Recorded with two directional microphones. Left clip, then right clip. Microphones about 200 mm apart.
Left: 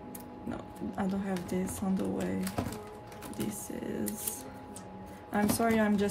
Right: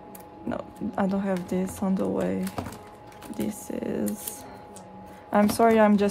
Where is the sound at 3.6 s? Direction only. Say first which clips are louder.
Right 7 dB; 40° right (ahead or behind).